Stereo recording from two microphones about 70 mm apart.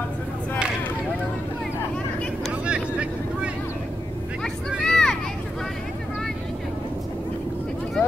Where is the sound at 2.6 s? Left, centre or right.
Centre.